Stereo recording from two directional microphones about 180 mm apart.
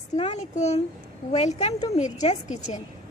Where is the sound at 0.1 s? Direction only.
40° left (ahead or behind).